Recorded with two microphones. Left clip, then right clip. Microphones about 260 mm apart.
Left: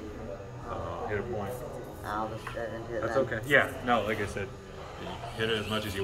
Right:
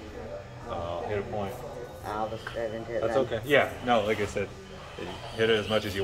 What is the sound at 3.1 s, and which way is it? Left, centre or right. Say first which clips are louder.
A man's voice: even; right.